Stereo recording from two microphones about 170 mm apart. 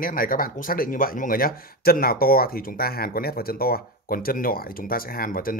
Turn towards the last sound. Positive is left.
turn(degrees=55)  # may be behind; listen again after turning